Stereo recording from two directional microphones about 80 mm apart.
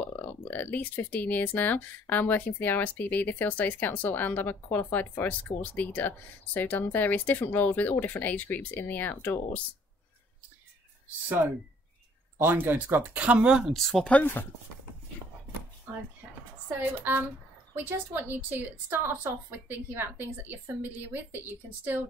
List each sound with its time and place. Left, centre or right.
0.0 s a sound: left
1.1 s speech: left
12.4 s a woman's voice: right; by 13.7 s centre
13.7 s speech: centre
14.0 s speech: left
17.0 s a woman's voice: right